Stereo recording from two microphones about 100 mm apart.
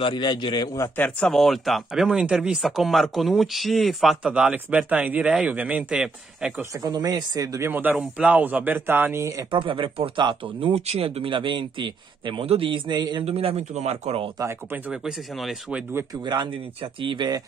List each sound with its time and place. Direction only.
0.0 s a man's voice: 50° left (ahead or behind)
0.9 s speech: 20° left (ahead or behind)
1.3 s speech: centre (ahead or behind)
6.8 s a man's voice: 45° right (ahead or behind)
7.5 s speech: 20° right (ahead or behind)
9.5 s a man's voice: 55° right (ahead or behind)
13.2 s speech: 80° right
14.9 s speech: 5° right (ahead or behind)
16.8 s a man's voice: 55° right (ahead or behind)